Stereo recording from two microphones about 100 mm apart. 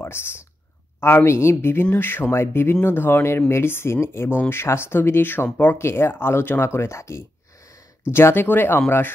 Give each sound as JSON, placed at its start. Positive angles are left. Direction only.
{"t": 1.0, "sound": "speech", "side_deg": 25}